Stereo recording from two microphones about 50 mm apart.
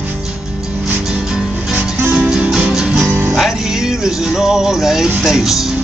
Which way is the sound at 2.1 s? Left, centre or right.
Centre.